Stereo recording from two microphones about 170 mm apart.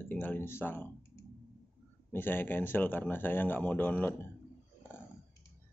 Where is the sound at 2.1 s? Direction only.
10° left (ahead or behind).